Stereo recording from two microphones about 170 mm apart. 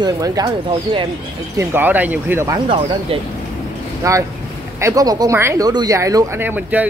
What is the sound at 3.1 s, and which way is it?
Speech, 35° right (ahead or behind).